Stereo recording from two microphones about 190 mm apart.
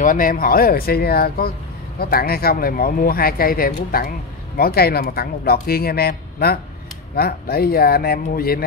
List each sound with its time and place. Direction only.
0.0 s speech: 45° left (ahead or behind)